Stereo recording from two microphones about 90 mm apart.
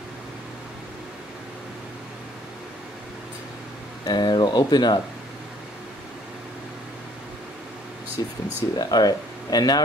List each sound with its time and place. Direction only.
4.0 s speech: 50° left (ahead or behind)
8.2 s speech: 50° left (ahead or behind)